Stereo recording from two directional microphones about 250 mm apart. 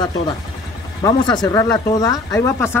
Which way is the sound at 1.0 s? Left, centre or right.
Centre.